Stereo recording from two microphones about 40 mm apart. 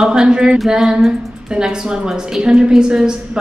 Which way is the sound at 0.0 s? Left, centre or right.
Centre.